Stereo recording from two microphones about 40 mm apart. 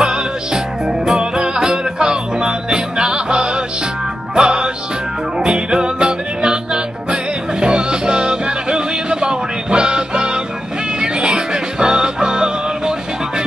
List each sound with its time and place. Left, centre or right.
0.0 s music: centre